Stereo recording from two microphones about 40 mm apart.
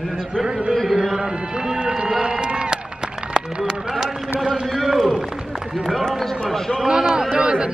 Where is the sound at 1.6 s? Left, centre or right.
Right.